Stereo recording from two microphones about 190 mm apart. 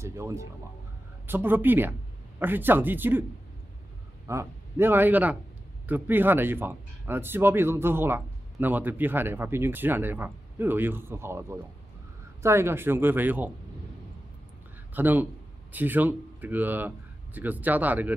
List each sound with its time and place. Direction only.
0.0 s music: 15° right (ahead or behind)
1.2 s speech: 10° right (ahead or behind)
4.3 s speech: 15° right (ahead or behind)
15.0 s speech: 10° right (ahead or behind)